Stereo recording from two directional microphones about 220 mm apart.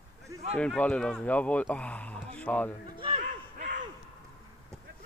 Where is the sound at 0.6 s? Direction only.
5° left (ahead or behind).